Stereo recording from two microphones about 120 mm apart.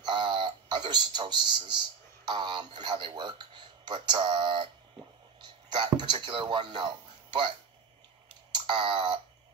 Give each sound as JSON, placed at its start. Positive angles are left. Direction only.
{"t": 0.0, "sound": "a sound", "side_deg": -40}
{"t": 2.2, "sound": "speech", "side_deg": -40}
{"t": 8.5, "sound": "clicking", "side_deg": -40}